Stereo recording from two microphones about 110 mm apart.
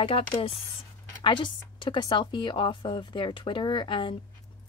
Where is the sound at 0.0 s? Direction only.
55° left (ahead or behind).